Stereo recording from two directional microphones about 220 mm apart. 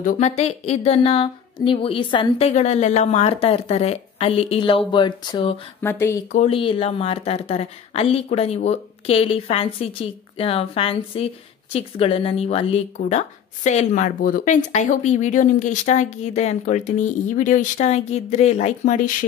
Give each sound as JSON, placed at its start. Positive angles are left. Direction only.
{"t": 0.0, "sound": "speech", "side_deg": 30}
{"t": 5.8, "sound": "speech", "side_deg": 10}
{"t": 6.3, "sound": "speech", "side_deg": 25}